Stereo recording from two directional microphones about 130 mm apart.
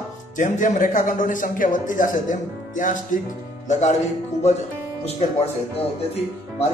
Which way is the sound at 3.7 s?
65° left (ahead or behind).